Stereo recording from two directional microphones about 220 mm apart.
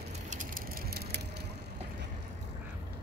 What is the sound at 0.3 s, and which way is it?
Bicycle, 35° right (ahead or behind).